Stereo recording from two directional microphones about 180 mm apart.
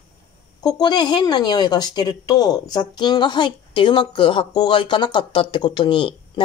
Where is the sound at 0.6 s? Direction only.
20° left (ahead or behind).